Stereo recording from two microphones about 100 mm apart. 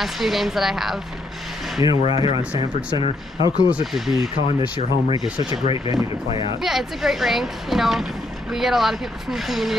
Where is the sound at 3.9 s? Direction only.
Centre (ahead or behind).